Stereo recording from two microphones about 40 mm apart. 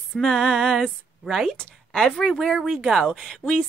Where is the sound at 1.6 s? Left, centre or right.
Centre.